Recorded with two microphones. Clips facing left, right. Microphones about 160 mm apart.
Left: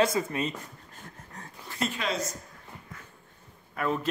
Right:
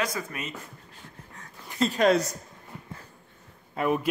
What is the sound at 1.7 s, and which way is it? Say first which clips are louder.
Speech: right 6 dB; 35° right (ahead or behind).